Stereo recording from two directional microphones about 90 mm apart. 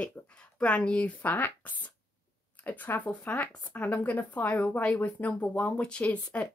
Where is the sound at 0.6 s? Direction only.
15° left (ahead or behind).